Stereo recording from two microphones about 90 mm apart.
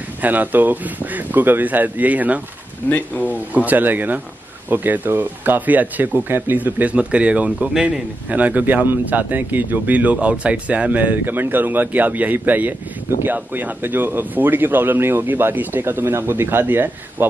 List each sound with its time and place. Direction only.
0.2 s speech: 20° right (ahead or behind)
2.8 s speech: 20° left (ahead or behind)
3.3 s speech: 20° right (ahead or behind)